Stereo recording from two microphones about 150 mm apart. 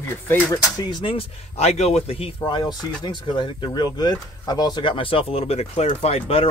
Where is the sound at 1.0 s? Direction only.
40° left (ahead or behind).